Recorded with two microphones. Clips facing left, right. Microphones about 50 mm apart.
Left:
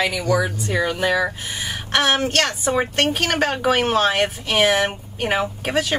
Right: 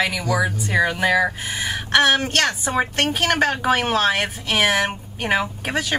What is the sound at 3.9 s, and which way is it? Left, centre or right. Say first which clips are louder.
Speech: left 1 dB; centre.